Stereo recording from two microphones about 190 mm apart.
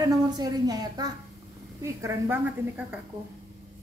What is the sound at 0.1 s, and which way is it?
A woman's voice, 20° right (ahead or behind).